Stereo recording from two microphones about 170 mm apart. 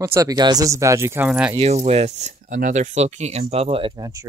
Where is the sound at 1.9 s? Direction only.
40° right (ahead or behind).